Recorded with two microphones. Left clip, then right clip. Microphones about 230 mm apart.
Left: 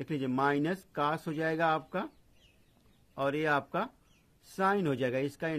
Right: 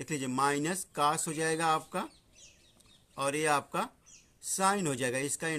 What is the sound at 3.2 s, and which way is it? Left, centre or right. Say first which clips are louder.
Speech: even; centre.